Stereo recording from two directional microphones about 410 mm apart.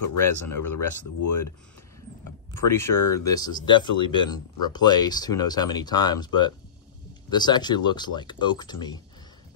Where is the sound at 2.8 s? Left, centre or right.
Centre.